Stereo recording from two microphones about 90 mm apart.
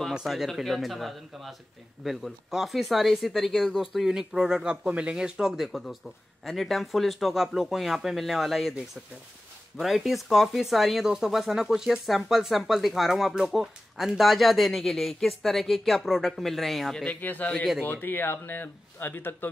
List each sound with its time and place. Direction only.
0.1 s speech: 5° right (ahead or behind)
9.8 s speech: centre (ahead or behind)
17.0 s speech: 15° left (ahead or behind)